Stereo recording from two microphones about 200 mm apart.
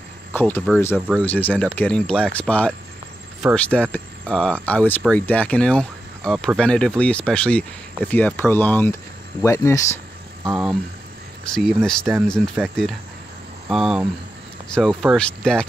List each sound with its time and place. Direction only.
0.3 s speech: 10° left (ahead or behind)
0.9 s speech: 5° right (ahead or behind)
1.2 s speech: 10° left (ahead or behind)
10.5 s speech: centre (ahead or behind)